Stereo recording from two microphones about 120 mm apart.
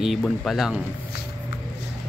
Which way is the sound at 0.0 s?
Centre (ahead or behind).